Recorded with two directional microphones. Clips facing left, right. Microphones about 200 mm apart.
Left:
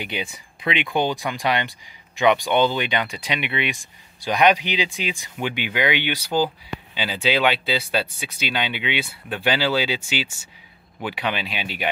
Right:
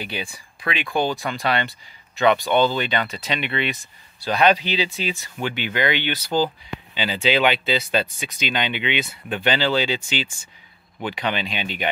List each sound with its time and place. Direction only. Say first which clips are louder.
0.0 s speech: left 1 dB; 20° left (ahead or behind)